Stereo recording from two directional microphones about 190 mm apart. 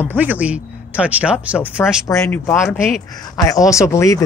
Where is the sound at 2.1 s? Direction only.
10° left (ahead or behind).